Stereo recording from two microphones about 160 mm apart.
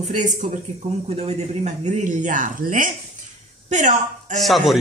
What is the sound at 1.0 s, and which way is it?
Speech, 40° right (ahead or behind).